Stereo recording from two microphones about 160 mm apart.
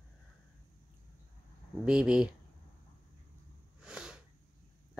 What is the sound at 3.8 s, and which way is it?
Sneeze, 5° right (ahead or behind).